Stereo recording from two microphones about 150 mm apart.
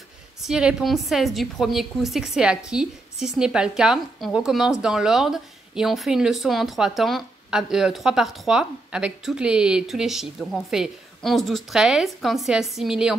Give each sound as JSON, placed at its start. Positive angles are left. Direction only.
{"t": 0.4, "sound": "a woman's voice", "side_deg": -5}